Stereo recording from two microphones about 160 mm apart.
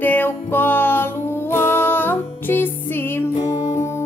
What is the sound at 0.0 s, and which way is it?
Music, 10° left (ahead or behind).